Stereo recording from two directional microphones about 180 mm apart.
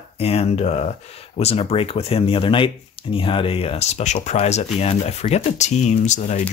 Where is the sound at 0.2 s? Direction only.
35° left (ahead or behind).